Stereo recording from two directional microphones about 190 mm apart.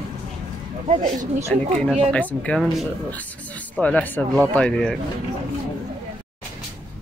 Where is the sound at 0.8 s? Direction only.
35° right (ahead or behind).